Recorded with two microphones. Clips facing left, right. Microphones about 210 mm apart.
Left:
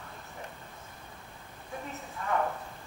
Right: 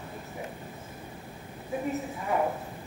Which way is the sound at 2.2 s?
15° right (ahead or behind).